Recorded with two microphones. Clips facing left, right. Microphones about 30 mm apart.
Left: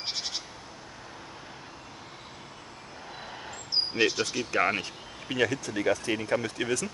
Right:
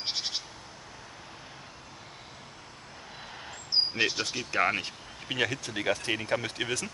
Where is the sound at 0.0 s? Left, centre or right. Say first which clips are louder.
Right 1 dB; centre.